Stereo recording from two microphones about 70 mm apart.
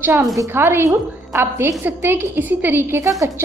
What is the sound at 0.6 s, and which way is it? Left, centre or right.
A woman's voice, right.